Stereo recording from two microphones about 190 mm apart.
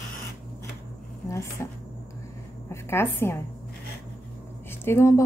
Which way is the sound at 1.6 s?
15° left (ahead or behind).